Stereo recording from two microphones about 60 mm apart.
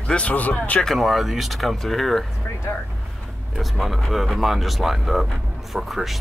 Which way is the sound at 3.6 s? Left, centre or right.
Centre.